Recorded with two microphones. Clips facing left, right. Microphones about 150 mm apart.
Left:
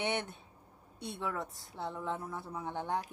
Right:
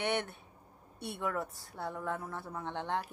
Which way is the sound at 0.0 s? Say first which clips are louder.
Right 1 dB; 15° left (ahead or behind).